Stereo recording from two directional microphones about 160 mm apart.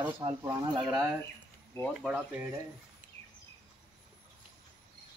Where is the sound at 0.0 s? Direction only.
25° right (ahead or behind).